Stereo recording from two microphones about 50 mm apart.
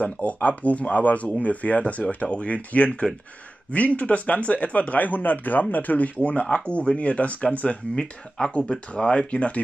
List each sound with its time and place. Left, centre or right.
0.0 s speech: left